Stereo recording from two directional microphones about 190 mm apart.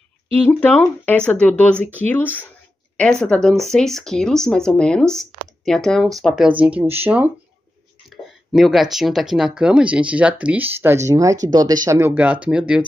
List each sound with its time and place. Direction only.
0.5 s speech: 10° left (ahead or behind); by 7.0 s 10° right (ahead or behind)
8.1 s speech: centre (ahead or behind)